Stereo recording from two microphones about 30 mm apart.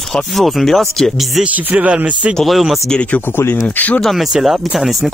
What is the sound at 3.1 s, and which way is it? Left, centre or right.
Speech, left.